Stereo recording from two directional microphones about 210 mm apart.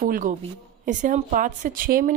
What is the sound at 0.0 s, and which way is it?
Speech, 40° right (ahead or behind).